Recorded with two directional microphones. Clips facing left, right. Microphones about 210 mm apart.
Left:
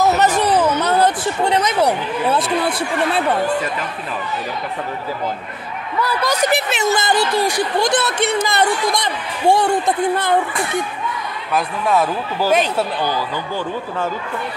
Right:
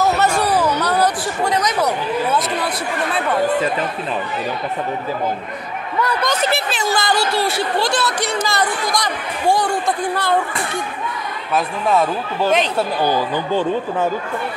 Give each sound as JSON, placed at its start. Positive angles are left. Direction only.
{"t": 0.4, "sound": "a sound", "side_deg": 20}
{"t": 6.0, "sound": "speech", "side_deg": 10}
{"t": 11.5, "sound": "speech", "side_deg": 0}
{"t": 13.0, "sound": "speech", "side_deg": -20}